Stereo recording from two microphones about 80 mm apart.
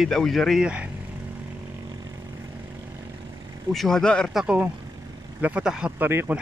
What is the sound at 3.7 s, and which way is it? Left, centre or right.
Speech, centre.